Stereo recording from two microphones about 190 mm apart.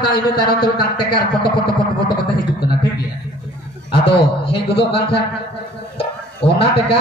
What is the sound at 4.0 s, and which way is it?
A man's voice, 25° left (ahead or behind).